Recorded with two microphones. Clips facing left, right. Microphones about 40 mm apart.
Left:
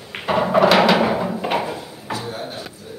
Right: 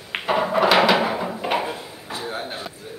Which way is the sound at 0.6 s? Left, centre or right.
Centre.